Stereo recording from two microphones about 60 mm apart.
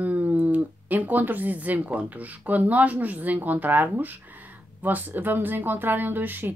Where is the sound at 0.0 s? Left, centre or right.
Right.